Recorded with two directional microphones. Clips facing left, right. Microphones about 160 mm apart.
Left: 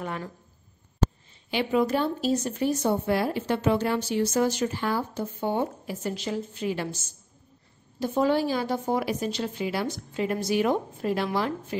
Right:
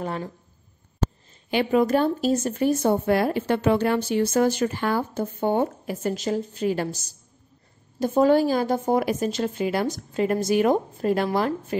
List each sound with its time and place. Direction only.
0.0 s speech: 35° right (ahead or behind)
1.5 s speech: 50° right (ahead or behind)